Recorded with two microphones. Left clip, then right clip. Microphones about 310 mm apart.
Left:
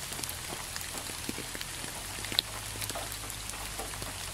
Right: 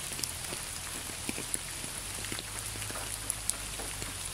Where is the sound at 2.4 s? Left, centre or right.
Left.